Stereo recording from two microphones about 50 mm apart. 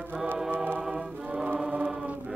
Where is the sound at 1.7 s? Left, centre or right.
Right.